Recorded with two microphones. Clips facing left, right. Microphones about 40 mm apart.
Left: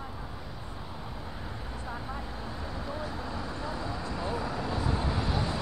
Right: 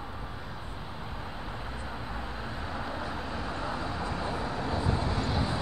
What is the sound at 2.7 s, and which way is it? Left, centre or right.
Vehicle, right.